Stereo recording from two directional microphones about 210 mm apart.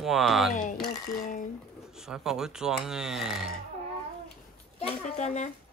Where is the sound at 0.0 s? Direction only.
Centre (ahead or behind).